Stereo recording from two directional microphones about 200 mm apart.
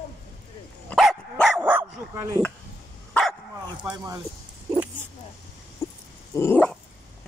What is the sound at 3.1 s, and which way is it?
Dog, 5° left (ahead or behind).